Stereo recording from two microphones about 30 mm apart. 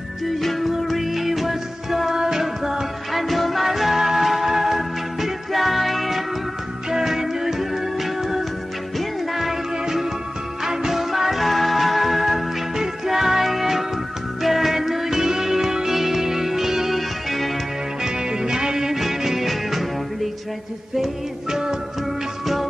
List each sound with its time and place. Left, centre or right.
0.4 s music: centre
2.1 s music: right
3.1 s music: centre
6.9 s music: centre
11.0 s music: centre
18.0 s music: right; by 19.9 s centre
21.5 s music: centre